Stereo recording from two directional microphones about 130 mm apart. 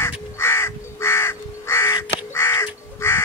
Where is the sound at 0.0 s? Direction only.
20° left (ahead or behind).